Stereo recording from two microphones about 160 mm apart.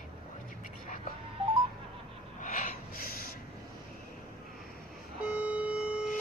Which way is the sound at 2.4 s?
55° left (ahead or behind).